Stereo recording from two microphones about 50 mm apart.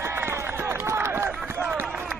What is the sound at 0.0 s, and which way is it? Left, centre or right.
Run, right.